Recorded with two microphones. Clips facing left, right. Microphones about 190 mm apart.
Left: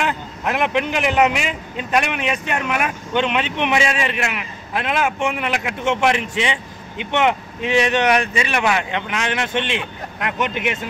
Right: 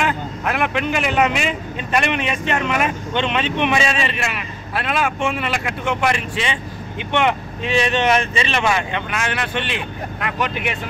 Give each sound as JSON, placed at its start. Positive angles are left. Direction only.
{"t": 0.0, "sound": "vehicle", "side_deg": 15}
{"t": 1.9, "sound": "speech", "side_deg": 10}